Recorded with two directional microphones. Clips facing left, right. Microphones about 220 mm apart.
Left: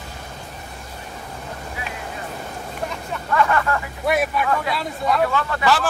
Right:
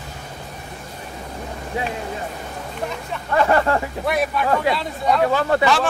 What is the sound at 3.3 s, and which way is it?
Speech, 35° right (ahead or behind).